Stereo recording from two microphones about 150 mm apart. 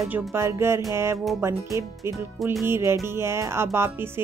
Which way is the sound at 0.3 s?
15° right (ahead or behind).